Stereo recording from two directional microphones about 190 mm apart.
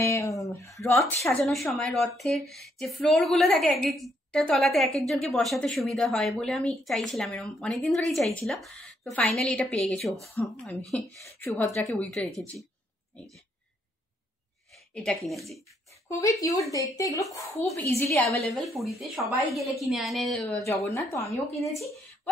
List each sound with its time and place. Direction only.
0.0 s speech: 15° left (ahead or behind)
1.4 s a woman's voice: centre (ahead or behind)
11.8 s a woman's voice: centre (ahead or behind)
14.7 s speech: centre (ahead or behind)
16.1 s a woman's voice: 15° left (ahead or behind)
18.4 s a woman's voice: centre (ahead or behind)
20.6 s a woman's voice: 15° left (ahead or behind)